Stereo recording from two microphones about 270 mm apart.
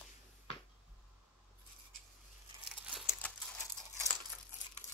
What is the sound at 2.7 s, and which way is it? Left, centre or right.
Crumpling, centre.